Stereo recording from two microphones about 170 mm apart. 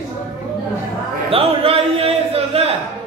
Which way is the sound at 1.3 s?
35° right (ahead or behind).